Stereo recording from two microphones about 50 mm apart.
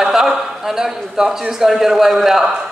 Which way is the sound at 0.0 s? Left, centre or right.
Centre.